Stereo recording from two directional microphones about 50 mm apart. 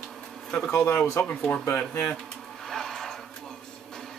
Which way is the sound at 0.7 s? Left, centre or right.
Left.